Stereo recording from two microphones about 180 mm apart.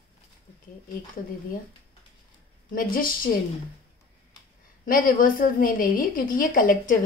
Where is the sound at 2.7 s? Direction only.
50° left (ahead or behind).